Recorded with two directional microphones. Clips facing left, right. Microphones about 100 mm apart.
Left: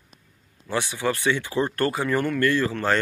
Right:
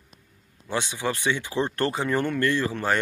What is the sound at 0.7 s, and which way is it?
Speech, 20° right (ahead or behind).